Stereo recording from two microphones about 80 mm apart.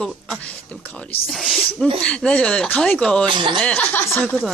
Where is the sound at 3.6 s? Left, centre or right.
Centre.